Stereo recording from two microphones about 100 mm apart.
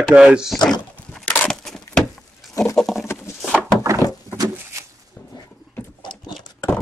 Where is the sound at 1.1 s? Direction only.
5° left (ahead or behind).